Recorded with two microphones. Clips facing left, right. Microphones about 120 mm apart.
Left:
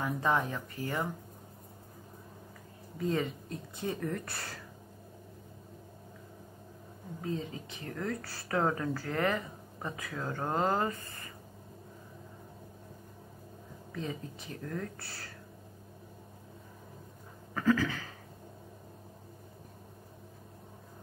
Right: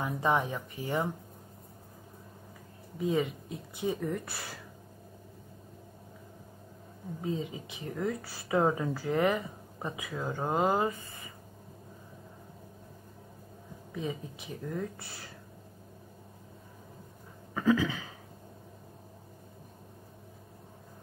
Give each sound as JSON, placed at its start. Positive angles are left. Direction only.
{"t": 0.2, "sound": "a woman's voice", "side_deg": -15}
{"t": 3.0, "sound": "a woman's voice", "side_deg": -10}
{"t": 7.2, "sound": "a woman's voice", "side_deg": -15}
{"t": 13.9, "sound": "a woman's voice", "side_deg": -10}
{"t": 17.6, "sound": "a sound", "side_deg": -10}